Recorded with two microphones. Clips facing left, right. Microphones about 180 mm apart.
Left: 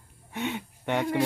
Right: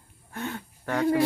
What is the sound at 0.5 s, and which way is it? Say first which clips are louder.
Speech: right 2 dB; 20° left (ahead or behind).